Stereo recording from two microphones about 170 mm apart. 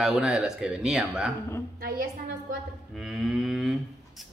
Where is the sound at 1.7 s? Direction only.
60° right (ahead or behind).